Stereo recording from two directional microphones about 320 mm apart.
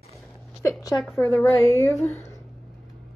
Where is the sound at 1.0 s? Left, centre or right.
Centre.